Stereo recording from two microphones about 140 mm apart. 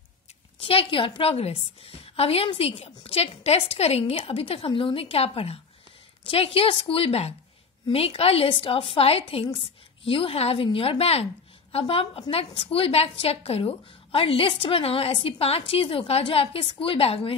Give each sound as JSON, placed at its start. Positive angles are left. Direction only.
{"t": 0.6, "sound": "a woman's voice", "side_deg": 40}